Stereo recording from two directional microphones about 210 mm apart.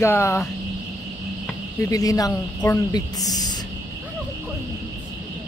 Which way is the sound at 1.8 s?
15° left (ahead or behind).